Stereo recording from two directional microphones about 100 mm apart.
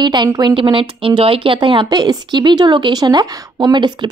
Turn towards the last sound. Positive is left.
turn(degrees=-45)  # may be behind; listen again after turning